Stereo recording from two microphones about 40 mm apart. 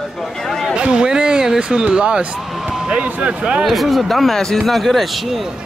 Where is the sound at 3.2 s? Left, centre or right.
Right.